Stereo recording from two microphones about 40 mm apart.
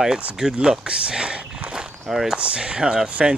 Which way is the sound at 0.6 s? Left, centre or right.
Right.